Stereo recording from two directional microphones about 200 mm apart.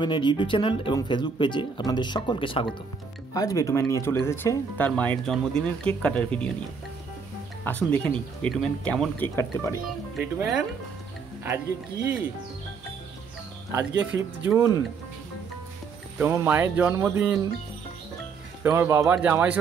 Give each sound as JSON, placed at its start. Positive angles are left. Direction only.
{"t": 0.0, "sound": "speech", "side_deg": 25}
{"t": 7.6, "sound": "speech", "side_deg": 5}
{"t": 9.8, "sound": "speech", "side_deg": -5}
{"t": 13.7, "sound": "speech", "side_deg": -10}
{"t": 16.2, "sound": "speech", "side_deg": -10}
{"t": 18.6, "sound": "speech", "side_deg": -15}